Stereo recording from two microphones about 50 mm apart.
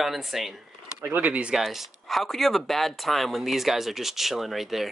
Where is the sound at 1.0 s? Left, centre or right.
Right.